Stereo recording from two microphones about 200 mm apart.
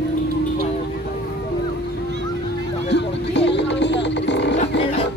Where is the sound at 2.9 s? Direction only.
60° left (ahead or behind).